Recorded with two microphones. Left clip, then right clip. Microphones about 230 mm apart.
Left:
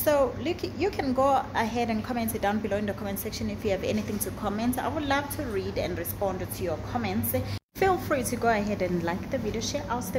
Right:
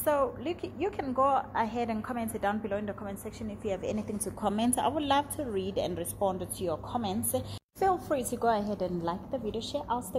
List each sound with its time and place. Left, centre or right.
0.0 s a woman's voice: centre
4.4 s a woman's voice: right
7.8 s a woman's voice: centre
8.2 s a woman's voice: centre
8.5 s a woman's voice: centre
9.5 s a woman's voice: centre